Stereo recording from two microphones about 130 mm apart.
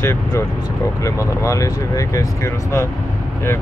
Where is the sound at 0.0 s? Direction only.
20° left (ahead or behind).